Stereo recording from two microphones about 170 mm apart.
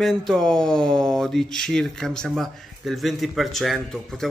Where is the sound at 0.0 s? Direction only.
Centre (ahead or behind).